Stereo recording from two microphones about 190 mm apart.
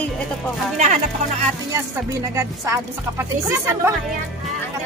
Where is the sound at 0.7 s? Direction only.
40° right (ahead or behind).